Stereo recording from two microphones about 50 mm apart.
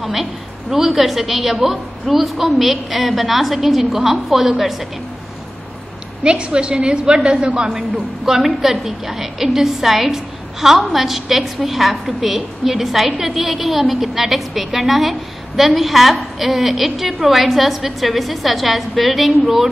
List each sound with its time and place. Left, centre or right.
0.0 s a woman's voice: centre
6.2 s a woman's voice: centre